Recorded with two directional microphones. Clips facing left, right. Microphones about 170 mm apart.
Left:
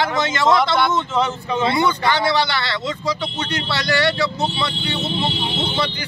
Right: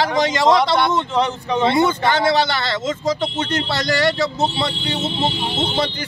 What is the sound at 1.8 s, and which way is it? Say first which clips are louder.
Speech: right 2 dB; 45° right (ahead or behind).